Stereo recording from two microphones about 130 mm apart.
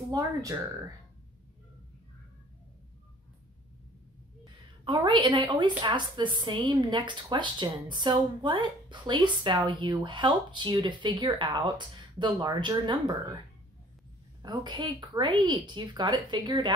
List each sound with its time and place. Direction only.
4.8 s a woman's voice: 35° right (ahead or behind)
14.4 s a woman's voice: 35° right (ahead or behind)